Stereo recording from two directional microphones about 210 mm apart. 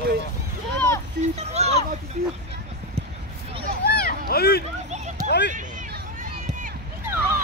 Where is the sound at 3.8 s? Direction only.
45° left (ahead or behind).